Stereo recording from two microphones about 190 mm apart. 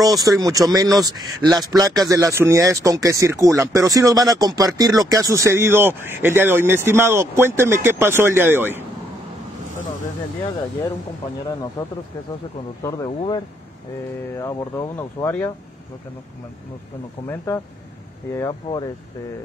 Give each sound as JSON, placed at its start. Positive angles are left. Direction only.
{"t": 0.0, "sound": "speech", "side_deg": -20}
{"t": 12.8, "sound": "speech", "side_deg": 15}
{"t": 14.4, "sound": "speech", "side_deg": 15}
{"t": 18.3, "sound": "speech", "side_deg": 20}